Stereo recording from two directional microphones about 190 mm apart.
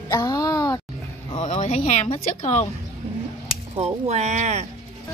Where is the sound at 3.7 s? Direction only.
35° right (ahead or behind).